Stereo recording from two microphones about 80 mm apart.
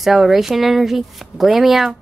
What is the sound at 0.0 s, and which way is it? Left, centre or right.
Speech, centre.